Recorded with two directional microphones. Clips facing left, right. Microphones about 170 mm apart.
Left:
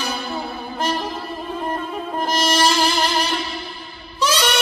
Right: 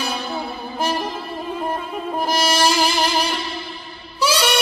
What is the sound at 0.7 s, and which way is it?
Music, 10° right (ahead or behind).